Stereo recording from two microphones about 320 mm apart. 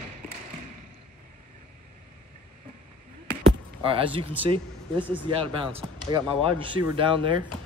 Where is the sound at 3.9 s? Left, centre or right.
Centre.